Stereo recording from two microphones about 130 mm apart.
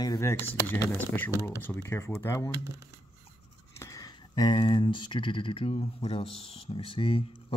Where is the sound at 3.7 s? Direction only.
25° left (ahead or behind).